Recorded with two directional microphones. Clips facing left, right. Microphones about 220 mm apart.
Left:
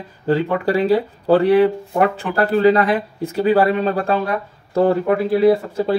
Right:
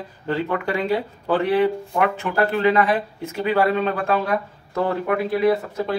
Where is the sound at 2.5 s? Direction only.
35° left (ahead or behind).